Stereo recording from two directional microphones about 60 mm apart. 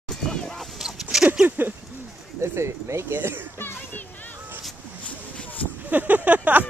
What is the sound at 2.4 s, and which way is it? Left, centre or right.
Speech, right.